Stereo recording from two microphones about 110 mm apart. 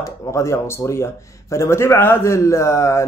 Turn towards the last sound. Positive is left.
turn(degrees=25)  # may be behind; listen again after turning